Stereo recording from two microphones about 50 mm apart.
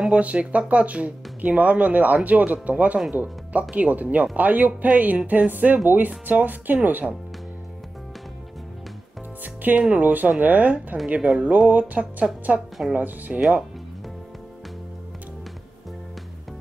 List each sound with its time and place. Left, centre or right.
0.1 s speech: right
9.4 s music: right
9.9 s speech: right
12.5 s speech: right
12.9 s speech: right